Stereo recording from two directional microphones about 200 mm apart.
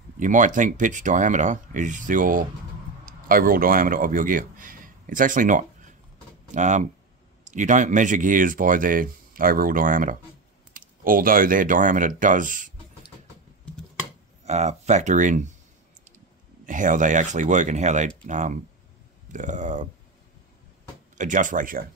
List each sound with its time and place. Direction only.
0.2 s speech: 40° right (ahead or behind)
14.4 s speech: 35° right (ahead or behind)
16.6 s speech: 40° right (ahead or behind)
21.2 s speech: 40° right (ahead or behind)